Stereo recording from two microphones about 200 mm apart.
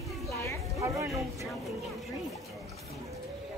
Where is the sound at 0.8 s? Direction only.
15° right (ahead or behind).